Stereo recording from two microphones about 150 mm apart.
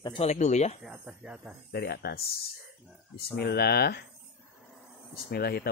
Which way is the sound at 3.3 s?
90° left.